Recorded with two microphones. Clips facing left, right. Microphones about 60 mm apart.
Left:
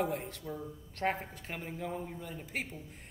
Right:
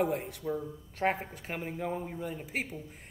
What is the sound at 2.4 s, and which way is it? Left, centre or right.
Speech, centre.